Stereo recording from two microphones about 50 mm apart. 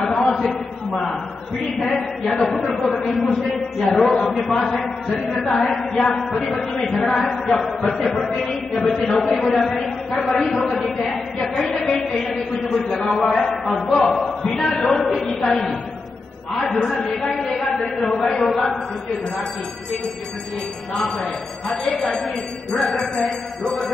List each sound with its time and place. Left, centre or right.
0.0 s a sound: centre
1.8 s a man's voice: centre
11.7 s a sound: centre
12.1 s a sound: centre
13.1 s speech: centre
14.0 s music: centre
14.6 s a man's voice: centre
16.7 s speech: centre
17.5 s a man's voice: centre
21.0 s speech: centre